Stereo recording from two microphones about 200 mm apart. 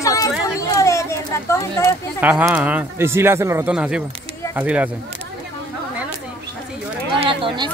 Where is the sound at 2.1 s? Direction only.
5° right (ahead or behind).